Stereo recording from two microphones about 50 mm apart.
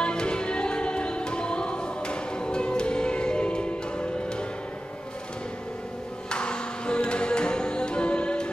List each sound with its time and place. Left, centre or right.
0.0 s music: centre
6.3 s music: centre